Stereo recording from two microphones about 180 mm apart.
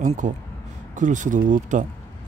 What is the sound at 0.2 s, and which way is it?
Speech, 45° right (ahead or behind).